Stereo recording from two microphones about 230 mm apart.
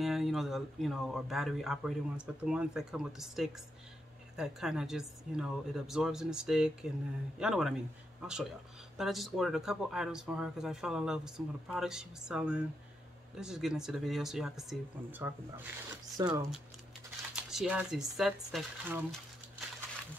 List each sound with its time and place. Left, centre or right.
0.0 s speech: centre
17.4 s speech: centre